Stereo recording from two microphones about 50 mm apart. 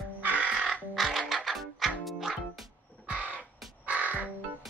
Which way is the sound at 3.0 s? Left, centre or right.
Right.